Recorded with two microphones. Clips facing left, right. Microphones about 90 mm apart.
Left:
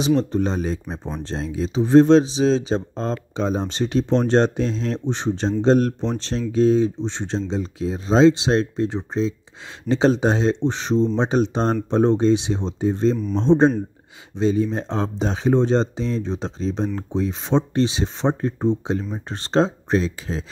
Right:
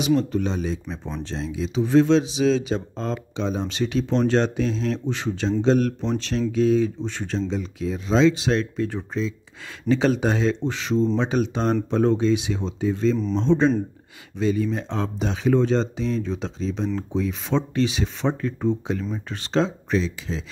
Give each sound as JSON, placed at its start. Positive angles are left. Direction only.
{"t": 0.0, "sound": "speech", "side_deg": 30}